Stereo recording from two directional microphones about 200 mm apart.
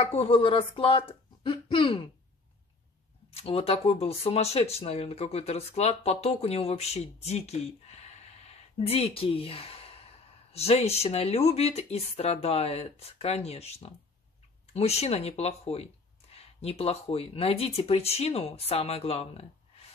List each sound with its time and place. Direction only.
0.0 s speech: 30° left (ahead or behind)
3.3 s speech: 30° left (ahead or behind)